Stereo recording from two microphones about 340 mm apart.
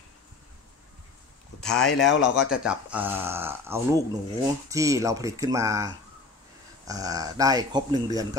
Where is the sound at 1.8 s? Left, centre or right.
Left.